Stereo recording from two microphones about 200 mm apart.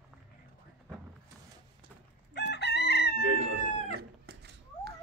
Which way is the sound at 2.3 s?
60° left (ahead or behind).